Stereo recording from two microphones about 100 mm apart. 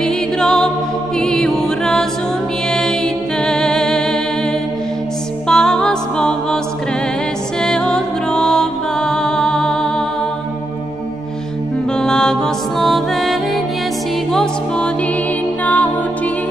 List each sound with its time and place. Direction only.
0.0 s music: 5° left (ahead or behind)
1.2 s a capella: 5° left (ahead or behind)
2.7 s music: 5° left (ahead or behind)
5.5 s music: 5° left (ahead or behind)
7.6 s music: 5° left (ahead or behind)
12.0 s music: 5° left (ahead or behind)
15.6 s music: 15° left (ahead or behind)